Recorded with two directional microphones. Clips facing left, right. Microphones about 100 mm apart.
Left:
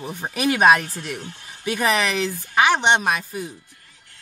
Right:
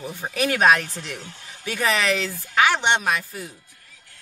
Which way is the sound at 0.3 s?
10° left (ahead or behind).